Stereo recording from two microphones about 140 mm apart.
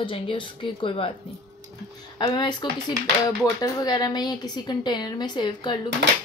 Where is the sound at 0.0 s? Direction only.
35° left (ahead or behind).